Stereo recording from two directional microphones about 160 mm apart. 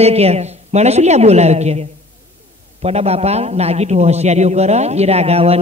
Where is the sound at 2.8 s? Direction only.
40° right (ahead or behind).